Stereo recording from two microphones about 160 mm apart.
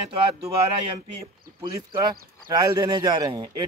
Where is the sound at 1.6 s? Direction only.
25° right (ahead or behind).